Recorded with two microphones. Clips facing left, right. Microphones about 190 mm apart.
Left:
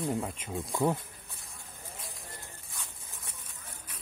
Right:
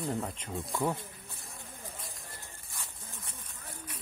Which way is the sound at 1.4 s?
Centre (ahead or behind).